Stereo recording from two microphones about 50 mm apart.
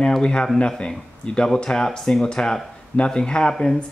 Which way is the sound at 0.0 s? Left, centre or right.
Centre.